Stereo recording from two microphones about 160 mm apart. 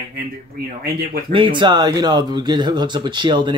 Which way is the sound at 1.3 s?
30° right (ahead or behind).